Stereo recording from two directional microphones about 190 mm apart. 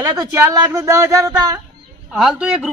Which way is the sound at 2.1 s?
Centre (ahead or behind).